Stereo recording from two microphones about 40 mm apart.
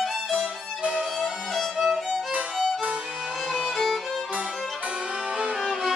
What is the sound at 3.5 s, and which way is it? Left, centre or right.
Violin, centre.